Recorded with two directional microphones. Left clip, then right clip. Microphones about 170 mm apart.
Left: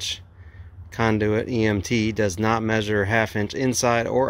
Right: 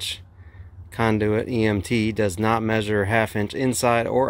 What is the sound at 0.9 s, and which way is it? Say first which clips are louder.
Speech: even; 10° right (ahead or behind).